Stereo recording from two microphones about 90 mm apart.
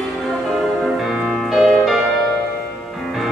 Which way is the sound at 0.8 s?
Centre (ahead or behind).